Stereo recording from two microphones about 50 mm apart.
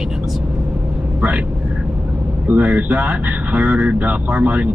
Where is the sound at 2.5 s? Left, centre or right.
Right.